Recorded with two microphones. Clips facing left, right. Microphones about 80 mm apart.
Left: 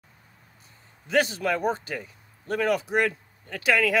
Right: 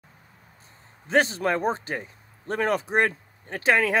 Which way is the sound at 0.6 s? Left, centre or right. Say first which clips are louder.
Right 3 dB; right.